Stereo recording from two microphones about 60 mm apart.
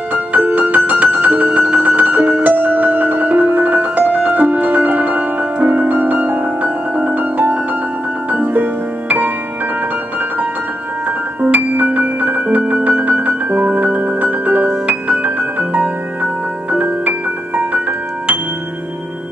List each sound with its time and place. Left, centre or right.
0.1 s music: right
11.4 s music: right